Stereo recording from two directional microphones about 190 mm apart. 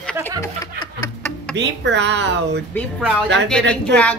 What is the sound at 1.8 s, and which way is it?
Speech, 65° right (ahead or behind).